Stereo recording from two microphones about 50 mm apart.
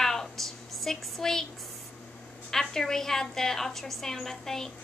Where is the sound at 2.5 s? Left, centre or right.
Centre.